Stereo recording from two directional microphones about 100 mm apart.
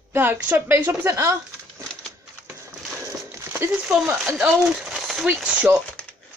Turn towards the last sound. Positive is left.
turn(degrees=-10)  # may be behind; listen again after turning